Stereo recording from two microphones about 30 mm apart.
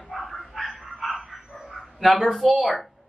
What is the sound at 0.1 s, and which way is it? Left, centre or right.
Bow-wow, centre.